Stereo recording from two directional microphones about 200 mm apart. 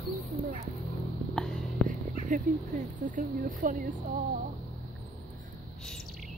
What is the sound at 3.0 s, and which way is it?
Speech, 40° right (ahead or behind).